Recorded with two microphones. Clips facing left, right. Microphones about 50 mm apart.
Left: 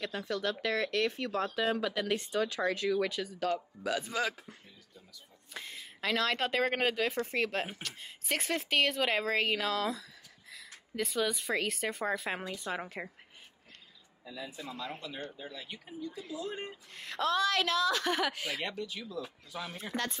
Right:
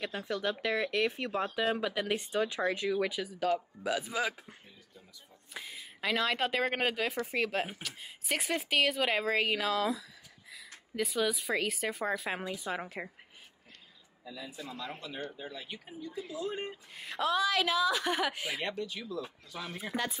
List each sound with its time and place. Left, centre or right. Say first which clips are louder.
0.0 s speech: even; centre
5.5 s speech: even; centre
14.2 s a man's voice: left 1 dB; centre